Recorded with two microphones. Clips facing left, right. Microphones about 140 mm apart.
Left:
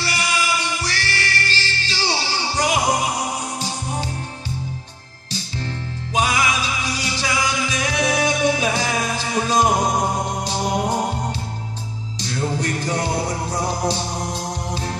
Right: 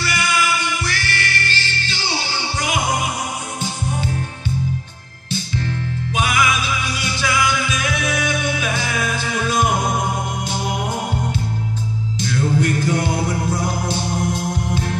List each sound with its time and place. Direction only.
0.0 s music: 30° left (ahead or behind)
6.1 s music: 35° left (ahead or behind)
12.2 s music: 35° left (ahead or behind)